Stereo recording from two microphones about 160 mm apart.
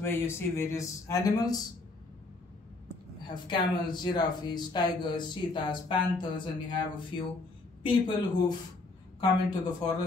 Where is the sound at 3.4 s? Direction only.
30° left (ahead or behind).